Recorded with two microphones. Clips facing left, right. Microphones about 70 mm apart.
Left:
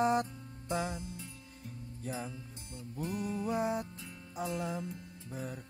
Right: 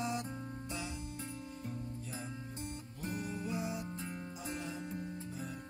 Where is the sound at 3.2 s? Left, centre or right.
Left.